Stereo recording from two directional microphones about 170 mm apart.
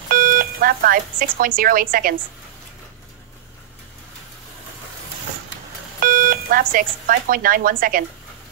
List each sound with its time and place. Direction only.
0.1 s speech: 55° right (ahead or behind)
5.9 s speech: 55° right (ahead or behind)